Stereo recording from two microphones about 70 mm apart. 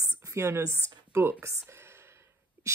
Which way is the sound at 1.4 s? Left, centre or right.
Right.